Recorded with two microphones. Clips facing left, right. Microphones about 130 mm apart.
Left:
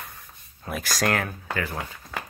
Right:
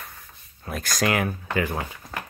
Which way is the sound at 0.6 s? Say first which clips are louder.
Right 1 dB; 5° left (ahead or behind).